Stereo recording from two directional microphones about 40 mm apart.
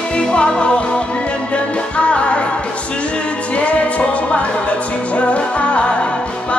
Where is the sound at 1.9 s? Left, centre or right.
Left.